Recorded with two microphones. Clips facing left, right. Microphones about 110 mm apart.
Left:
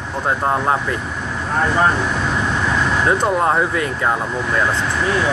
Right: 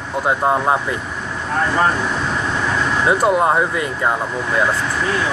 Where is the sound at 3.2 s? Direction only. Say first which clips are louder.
Right 2 dB; 10° right (ahead or behind).